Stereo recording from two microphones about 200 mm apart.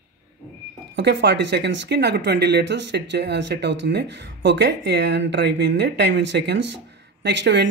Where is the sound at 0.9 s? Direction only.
60° right (ahead or behind).